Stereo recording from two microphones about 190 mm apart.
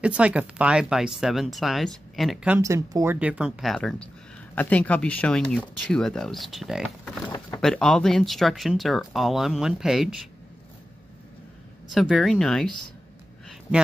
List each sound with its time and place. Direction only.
0.0 s speech: 5° right (ahead or behind)
7.2 s a sound: 20° left (ahead or behind)
7.6 s speech: 5° left (ahead or behind)
11.9 s speech: centre (ahead or behind)